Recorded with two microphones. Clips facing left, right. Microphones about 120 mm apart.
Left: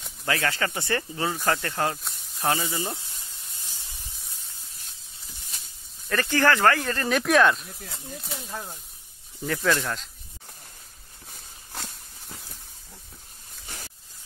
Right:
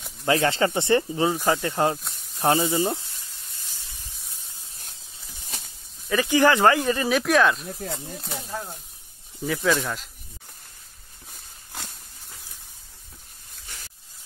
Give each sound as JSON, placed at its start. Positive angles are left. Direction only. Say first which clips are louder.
{"t": 0.3, "sound": "speech", "louder": "right 6 dB", "side_deg": -25}
{"t": 2.0, "sound": "sizzle", "louder": "even", "side_deg": 0}
{"t": 2.4, "sound": "speech", "louder": "right 6 dB", "side_deg": -25}
{"t": 6.0, "sound": "speech", "louder": "right 3 dB", "side_deg": -10}
{"t": 7.1, "sound": "speech", "louder": "left 1 dB", "side_deg": 0}